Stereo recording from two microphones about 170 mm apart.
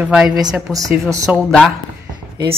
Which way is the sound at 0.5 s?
15° right (ahead or behind).